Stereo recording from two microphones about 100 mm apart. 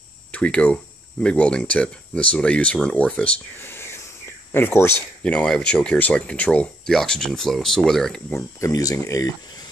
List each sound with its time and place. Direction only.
0.3 s speech: 10° left (ahead or behind)
4.5 s speech: 20° left (ahead or behind)
5.2 s speech: 10° left (ahead or behind)
8.3 s speech: 30° left (ahead or behind)